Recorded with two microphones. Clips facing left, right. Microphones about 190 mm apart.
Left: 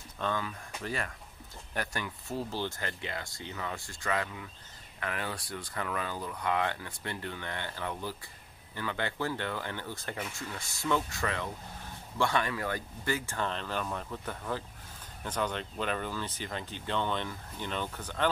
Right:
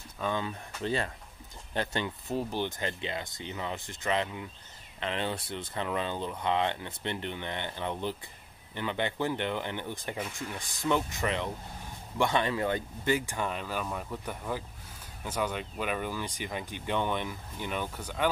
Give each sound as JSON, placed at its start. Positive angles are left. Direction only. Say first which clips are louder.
{"t": 0.4, "sound": "speech", "louder": "right 4 dB", "side_deg": -25}